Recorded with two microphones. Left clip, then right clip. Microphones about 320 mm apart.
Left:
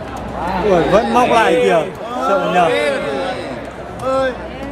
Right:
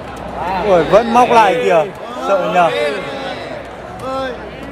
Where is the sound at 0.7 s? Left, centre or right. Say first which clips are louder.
Right 3 dB; centre.